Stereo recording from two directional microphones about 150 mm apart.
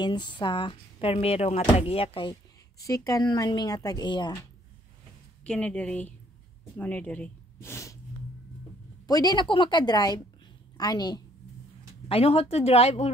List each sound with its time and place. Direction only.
0.0 s speech: 30° left (ahead or behind)
2.8 s speech: 20° left (ahead or behind)
5.4 s speech: 5° left (ahead or behind)
9.0 s speech: 25° left (ahead or behind)
12.1 s speech: 40° left (ahead or behind)